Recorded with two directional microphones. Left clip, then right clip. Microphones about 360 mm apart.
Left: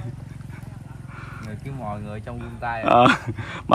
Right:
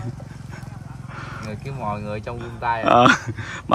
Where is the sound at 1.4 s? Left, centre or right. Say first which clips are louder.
Right 5 dB; right.